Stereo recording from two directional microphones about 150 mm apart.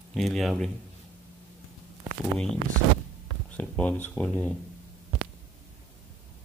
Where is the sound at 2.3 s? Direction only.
5° left (ahead or behind).